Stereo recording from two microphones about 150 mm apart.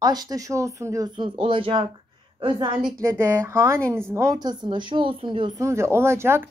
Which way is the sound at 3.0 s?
15° right (ahead or behind).